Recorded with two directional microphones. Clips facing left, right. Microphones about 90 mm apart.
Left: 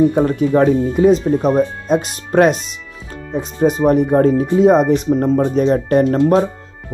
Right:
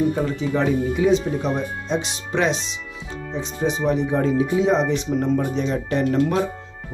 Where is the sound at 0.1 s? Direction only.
50° left (ahead or behind).